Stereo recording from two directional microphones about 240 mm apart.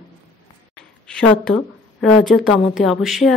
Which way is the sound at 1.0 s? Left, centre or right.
Centre.